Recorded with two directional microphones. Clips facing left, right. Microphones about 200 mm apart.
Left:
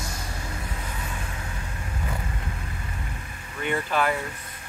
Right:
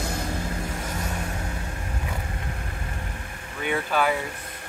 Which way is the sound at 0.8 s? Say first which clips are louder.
Right 4 dB; 45° right (ahead or behind).